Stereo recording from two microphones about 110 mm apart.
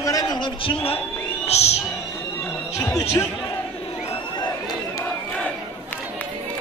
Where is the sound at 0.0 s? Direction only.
35° left (ahead or behind).